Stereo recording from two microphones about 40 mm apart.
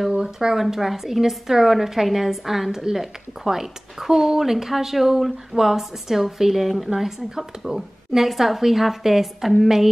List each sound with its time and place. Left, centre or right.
0.1 s a woman's voice: centre